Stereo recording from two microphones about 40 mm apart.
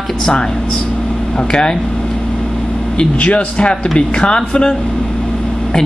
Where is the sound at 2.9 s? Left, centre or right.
Left.